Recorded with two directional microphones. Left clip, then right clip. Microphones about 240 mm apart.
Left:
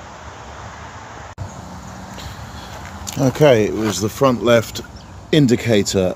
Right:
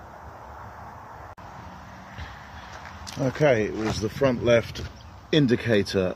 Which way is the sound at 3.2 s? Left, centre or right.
Centre.